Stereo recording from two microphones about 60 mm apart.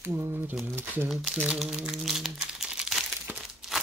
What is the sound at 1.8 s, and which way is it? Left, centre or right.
Crumpling, centre.